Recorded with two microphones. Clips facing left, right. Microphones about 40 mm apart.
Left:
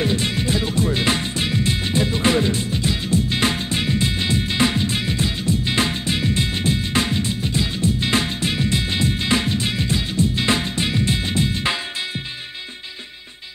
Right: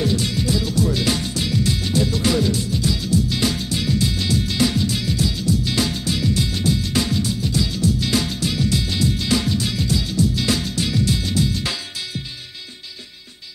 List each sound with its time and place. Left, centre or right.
0.0 s music: left